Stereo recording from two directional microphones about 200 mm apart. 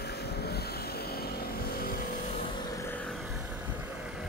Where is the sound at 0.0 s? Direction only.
55° left (ahead or behind).